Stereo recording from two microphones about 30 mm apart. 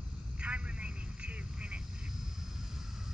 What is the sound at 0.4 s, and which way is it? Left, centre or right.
Telephone, right.